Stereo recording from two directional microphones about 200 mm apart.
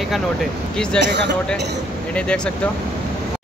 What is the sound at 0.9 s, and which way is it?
Speech, 60° right (ahead or behind).